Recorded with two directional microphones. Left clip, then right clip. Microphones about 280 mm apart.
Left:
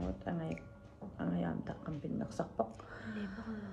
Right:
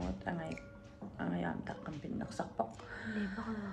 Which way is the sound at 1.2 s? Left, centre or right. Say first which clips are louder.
Even; centre.